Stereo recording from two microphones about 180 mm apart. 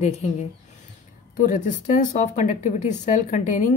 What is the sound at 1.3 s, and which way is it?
A woman's voice, 50° left (ahead or behind).